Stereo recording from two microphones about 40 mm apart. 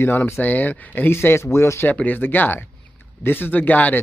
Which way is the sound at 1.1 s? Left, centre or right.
Left.